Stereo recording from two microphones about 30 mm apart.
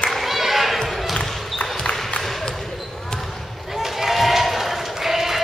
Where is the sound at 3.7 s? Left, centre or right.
Centre.